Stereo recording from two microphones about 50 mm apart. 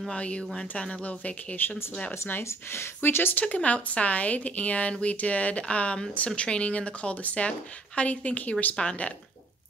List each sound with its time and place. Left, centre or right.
0.1 s speech: left
2.0 s speech: left
2.4 s speech: left
3.4 s speech: left